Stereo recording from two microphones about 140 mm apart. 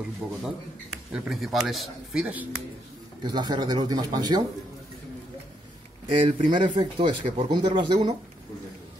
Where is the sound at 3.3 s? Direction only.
30° right (ahead or behind).